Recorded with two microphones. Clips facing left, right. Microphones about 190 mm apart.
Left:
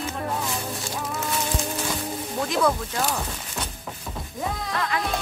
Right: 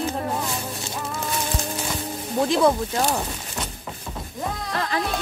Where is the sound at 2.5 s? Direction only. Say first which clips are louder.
Right 3 dB; 30° right (ahead or behind).